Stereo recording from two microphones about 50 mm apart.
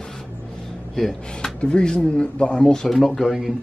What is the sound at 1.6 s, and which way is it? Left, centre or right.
Speech, centre.